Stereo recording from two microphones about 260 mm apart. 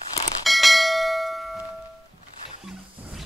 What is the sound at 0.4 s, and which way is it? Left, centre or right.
Bell, centre.